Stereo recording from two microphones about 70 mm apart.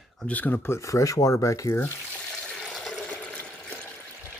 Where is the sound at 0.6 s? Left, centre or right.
Left.